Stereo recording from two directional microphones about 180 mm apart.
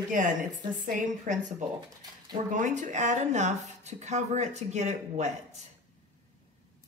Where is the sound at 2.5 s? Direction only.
45° right (ahead or behind).